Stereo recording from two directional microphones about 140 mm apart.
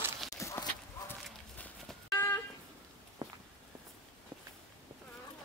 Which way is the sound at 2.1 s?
15° left (ahead or behind).